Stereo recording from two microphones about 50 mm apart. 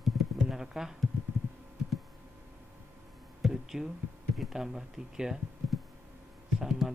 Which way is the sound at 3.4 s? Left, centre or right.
Centre.